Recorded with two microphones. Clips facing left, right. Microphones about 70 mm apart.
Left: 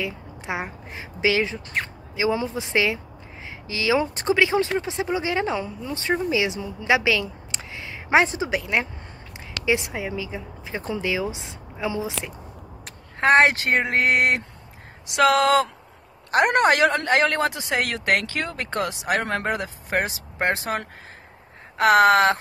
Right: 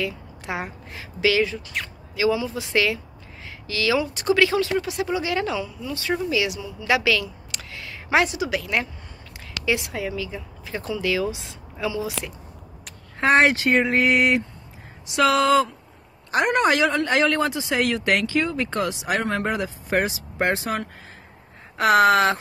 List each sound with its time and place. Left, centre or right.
0.0 s a woman's voice: left
4.0 s speech: left
4.3 s speech: left
13.2 s a man's voice: left